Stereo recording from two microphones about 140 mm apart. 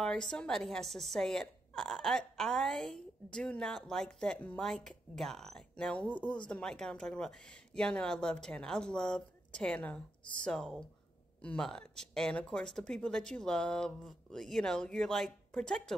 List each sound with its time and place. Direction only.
0.0 s a woman's voice: 5° left (ahead or behind)